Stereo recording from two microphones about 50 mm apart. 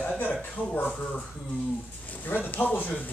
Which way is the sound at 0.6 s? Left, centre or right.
Left.